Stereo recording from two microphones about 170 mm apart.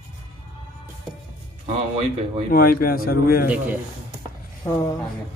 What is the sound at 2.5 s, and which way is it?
Speech, 60° left (ahead or behind).